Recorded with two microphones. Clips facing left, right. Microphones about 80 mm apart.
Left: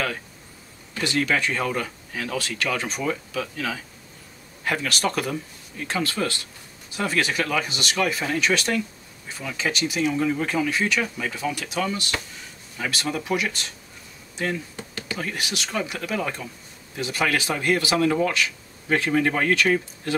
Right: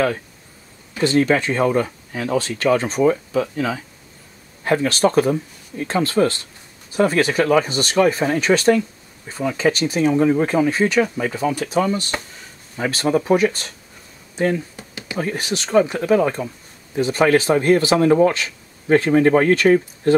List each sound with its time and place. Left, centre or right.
1.0 s speech: right